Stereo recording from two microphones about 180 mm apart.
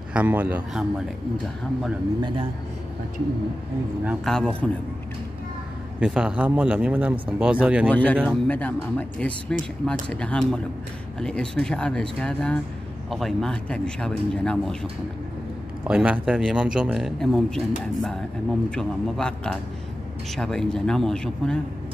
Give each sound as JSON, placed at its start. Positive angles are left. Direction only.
{"t": 0.1, "sound": "a man's voice", "side_deg": -10}
{"t": 2.2, "sound": "a man's voice", "side_deg": -30}
{"t": 4.0, "sound": "a man's voice", "side_deg": -10}
{"t": 4.3, "sound": "speech", "side_deg": 5}
{"t": 5.9, "sound": "a man's voice", "side_deg": -5}
{"t": 7.9, "sound": "speech", "side_deg": 10}
{"t": 15.9, "sound": "speech", "side_deg": -5}
{"t": 18.8, "sound": "speech", "side_deg": 5}